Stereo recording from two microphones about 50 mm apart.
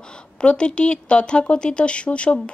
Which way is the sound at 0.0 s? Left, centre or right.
Centre.